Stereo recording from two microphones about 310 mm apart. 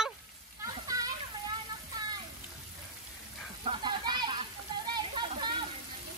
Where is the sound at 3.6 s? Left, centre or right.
Centre.